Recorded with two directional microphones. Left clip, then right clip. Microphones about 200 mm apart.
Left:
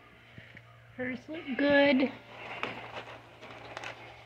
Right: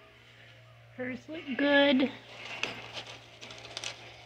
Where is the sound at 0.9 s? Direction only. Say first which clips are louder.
Left 1 dB; 5° right (ahead or behind); by 2.1 s 20° right (ahead or behind).